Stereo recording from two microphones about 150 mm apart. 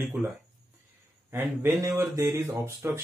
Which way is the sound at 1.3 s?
15° right (ahead or behind).